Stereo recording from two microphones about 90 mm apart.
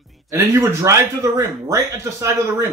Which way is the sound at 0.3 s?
35° right (ahead or behind).